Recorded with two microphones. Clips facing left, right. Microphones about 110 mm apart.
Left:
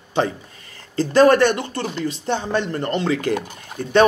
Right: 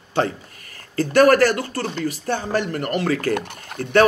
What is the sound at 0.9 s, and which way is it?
A man's voice, 25° left (ahead or behind).